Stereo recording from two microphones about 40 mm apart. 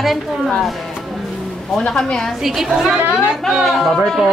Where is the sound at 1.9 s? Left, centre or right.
Centre.